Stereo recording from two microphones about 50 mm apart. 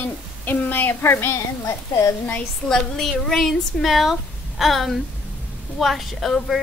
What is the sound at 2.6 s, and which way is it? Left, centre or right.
Speech, centre.